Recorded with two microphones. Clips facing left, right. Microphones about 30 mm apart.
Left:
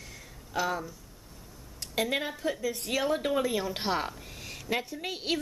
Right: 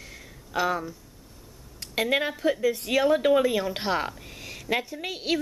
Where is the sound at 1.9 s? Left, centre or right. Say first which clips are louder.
Right 5 dB; right.